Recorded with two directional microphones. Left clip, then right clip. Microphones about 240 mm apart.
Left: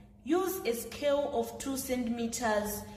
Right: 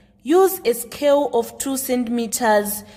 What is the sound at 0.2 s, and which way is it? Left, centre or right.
A woman's voice, right.